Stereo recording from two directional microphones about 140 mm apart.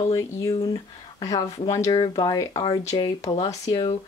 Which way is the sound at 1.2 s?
25° left (ahead or behind).